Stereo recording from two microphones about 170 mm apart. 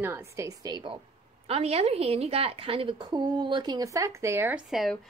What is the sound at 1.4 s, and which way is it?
A woman's voice, 35° right (ahead or behind).